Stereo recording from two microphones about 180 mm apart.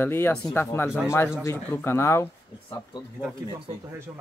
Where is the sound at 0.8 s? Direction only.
5° right (ahead or behind).